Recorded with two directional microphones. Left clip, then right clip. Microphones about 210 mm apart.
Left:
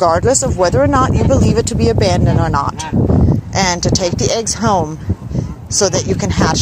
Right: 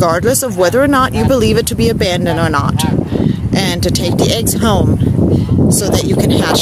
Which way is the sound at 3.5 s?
20° right (ahead or behind).